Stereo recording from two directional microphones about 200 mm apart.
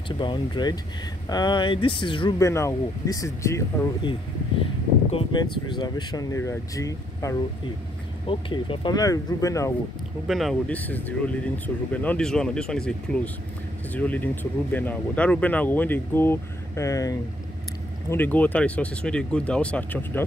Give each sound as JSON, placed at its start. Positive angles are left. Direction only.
{"t": 0.2, "sound": "speech", "side_deg": 25}
{"t": 5.1, "sound": "speech", "side_deg": 20}
{"t": 10.2, "sound": "speech", "side_deg": 0}
{"t": 18.1, "sound": "speech", "side_deg": 10}